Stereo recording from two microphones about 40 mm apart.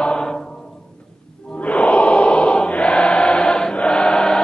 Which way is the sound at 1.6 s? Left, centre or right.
Left.